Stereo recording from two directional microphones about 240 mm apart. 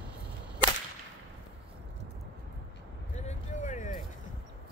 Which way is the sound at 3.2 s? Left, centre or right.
Left.